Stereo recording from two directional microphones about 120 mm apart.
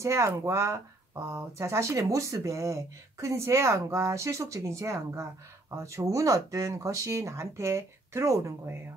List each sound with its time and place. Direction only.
0.0 s speech: 25° right (ahead or behind)